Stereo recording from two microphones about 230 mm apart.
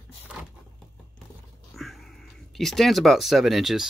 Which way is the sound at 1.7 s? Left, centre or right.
Centre.